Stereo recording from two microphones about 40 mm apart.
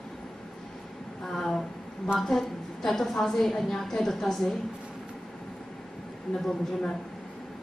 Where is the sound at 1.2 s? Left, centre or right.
Centre.